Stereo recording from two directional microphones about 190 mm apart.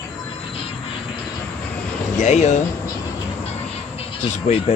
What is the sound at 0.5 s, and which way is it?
Music, 30° left (ahead or behind).